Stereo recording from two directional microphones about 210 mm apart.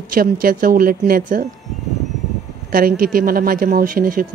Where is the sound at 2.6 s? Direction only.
45° right (ahead or behind).